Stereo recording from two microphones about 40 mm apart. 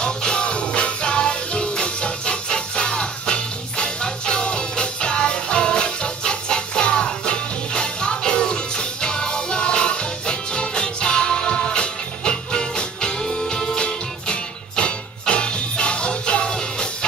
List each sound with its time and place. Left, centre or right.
0.0 s music: left